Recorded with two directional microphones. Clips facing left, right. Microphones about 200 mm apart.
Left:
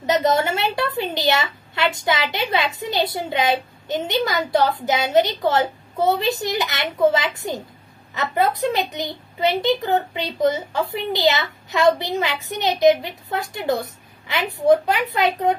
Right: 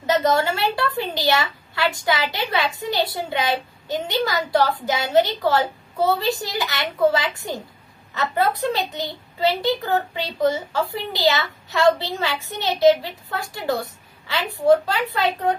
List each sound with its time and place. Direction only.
0.0 s a woman's voice: 20° left (ahead or behind)